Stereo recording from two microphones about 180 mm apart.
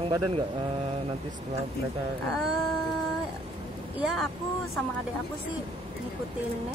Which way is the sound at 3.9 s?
Centre (ahead or behind).